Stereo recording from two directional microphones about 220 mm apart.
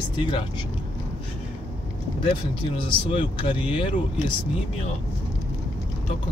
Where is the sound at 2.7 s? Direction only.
25° left (ahead or behind).